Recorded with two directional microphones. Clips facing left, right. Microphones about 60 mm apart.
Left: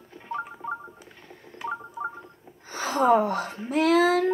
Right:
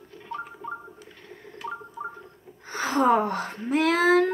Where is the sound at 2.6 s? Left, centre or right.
Right.